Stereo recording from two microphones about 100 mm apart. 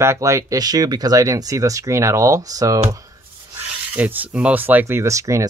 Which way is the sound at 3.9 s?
15° right (ahead or behind).